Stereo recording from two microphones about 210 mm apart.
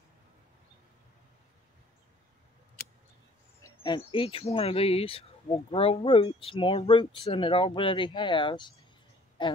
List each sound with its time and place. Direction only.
3.6 s speech: 20° left (ahead or behind)